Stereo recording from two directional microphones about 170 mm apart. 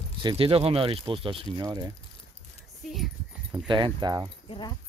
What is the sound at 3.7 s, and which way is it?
Speech, 25° right (ahead or behind).